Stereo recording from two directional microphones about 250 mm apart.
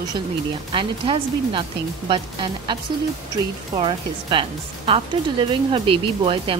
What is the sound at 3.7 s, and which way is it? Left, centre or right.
Speech, centre.